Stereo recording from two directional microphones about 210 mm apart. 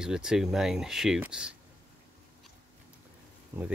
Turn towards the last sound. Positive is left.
turn(degrees=-10)  # may be behind; listen again after turning